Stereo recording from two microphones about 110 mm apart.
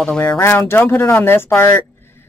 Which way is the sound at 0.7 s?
20° left (ahead or behind).